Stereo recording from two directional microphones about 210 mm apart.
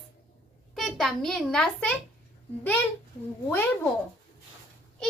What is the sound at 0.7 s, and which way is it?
A child's voice, centre (ahead or behind).